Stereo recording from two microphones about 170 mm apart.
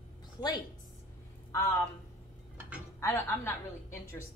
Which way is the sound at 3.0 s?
15° left (ahead or behind).